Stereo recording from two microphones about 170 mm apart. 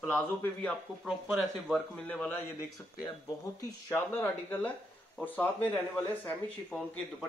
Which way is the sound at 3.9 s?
10° left (ahead or behind).